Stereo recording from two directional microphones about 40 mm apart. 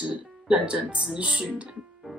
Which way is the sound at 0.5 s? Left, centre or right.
Right.